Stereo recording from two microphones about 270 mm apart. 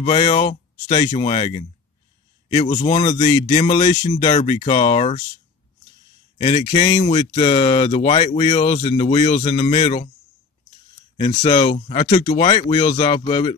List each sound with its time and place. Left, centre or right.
0.0 s speech: left
6.4 s speech: left
11.1 s speech: centre